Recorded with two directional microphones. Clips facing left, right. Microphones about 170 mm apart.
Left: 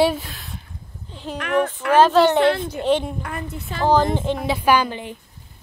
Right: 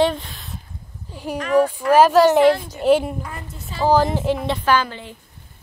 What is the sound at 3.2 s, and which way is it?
Speech, 65° left (ahead or behind).